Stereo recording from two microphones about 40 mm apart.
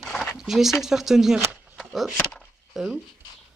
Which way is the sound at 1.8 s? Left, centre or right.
Centre.